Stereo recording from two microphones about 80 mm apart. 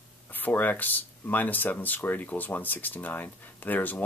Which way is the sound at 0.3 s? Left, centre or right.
Left.